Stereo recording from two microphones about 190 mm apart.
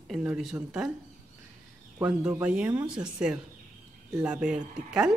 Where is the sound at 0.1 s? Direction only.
5° right (ahead or behind).